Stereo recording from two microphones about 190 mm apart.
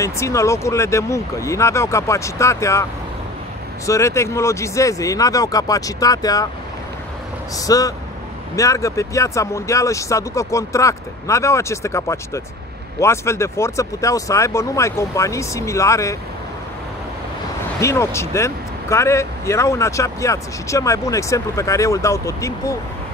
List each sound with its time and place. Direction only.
0.0 s speech: 15° left (ahead or behind)
7.5 s speech: 20° left (ahead or behind)
17.7 s speech: 15° left (ahead or behind)